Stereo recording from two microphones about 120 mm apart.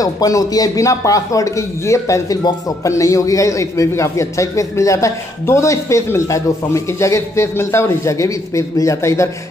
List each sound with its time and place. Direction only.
0.0 s a man's voice: 30° left (ahead or behind)